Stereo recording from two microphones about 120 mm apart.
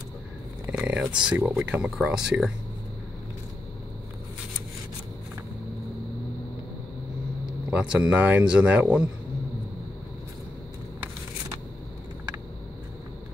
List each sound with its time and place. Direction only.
0.7 s a sound: 10° right (ahead or behind)
1.2 s speech: 5° right (ahead or behind)
7.7 s speech: 10° right (ahead or behind)